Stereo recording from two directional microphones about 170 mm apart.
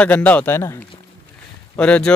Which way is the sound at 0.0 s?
10° left (ahead or behind).